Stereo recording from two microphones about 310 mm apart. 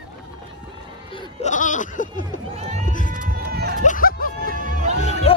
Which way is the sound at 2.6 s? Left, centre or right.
Right.